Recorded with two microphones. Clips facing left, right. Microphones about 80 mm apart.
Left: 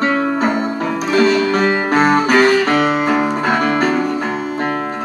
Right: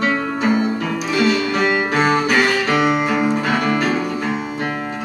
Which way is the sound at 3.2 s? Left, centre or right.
Left.